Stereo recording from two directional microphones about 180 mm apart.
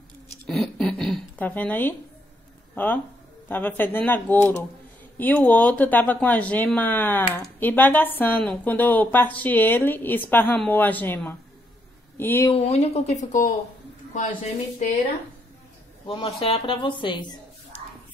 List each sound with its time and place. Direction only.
0.5 s a sound: centre (ahead or behind)
2.7 s speech: 10° left (ahead or behind)
12.4 s speech: 35° left (ahead or behind)
16.1 s a woman's voice: 30° left (ahead or behind)